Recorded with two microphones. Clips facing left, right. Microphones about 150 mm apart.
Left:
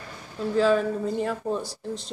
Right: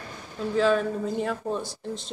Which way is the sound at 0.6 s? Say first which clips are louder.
Left 1 dB; centre (ahead or behind).